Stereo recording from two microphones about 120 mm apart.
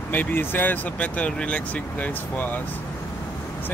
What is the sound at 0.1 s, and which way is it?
Speech, 15° left (ahead or behind).